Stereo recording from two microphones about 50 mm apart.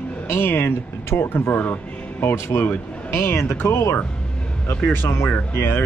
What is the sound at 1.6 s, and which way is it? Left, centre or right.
Speech, left.